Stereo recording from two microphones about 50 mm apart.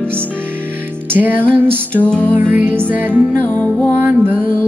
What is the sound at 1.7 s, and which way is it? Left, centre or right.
Music, left.